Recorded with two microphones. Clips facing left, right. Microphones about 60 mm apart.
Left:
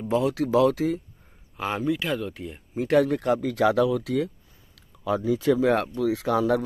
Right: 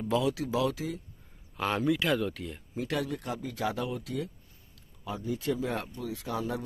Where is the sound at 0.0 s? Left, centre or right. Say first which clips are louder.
Left 5 dB; left.